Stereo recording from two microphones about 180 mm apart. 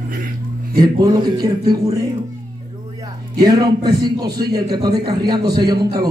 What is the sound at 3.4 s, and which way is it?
Speech, 20° right (ahead or behind).